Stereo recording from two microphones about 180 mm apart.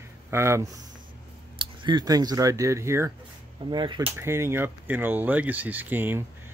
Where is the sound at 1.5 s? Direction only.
25° right (ahead or behind).